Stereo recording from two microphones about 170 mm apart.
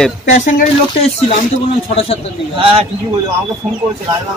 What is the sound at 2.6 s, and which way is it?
Speech, 35° right (ahead or behind).